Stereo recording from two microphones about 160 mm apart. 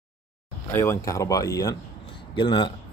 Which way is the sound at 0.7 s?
15° left (ahead or behind).